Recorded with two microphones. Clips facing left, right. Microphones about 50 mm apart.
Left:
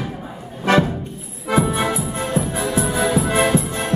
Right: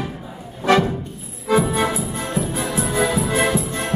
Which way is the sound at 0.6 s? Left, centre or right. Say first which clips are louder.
Even; left.